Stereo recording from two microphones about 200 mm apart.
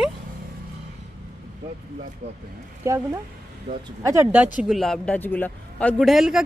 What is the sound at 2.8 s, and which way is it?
Speech, 15° right (ahead or behind).